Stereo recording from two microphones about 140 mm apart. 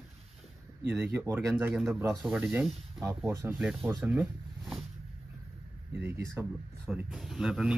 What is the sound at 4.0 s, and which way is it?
Speech, 10° right (ahead or behind).